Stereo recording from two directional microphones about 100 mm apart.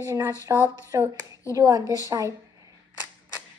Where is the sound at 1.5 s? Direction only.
35° right (ahead or behind).